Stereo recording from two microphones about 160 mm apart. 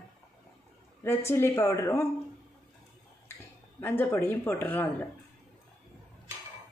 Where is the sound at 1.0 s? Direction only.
15° left (ahead or behind).